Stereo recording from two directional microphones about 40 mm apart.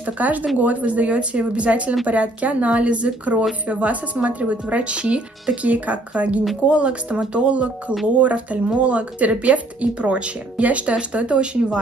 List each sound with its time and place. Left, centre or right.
0.0 s speech: right
5.7 s speech: right